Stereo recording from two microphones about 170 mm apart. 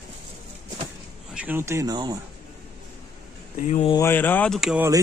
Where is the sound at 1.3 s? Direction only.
10° right (ahead or behind).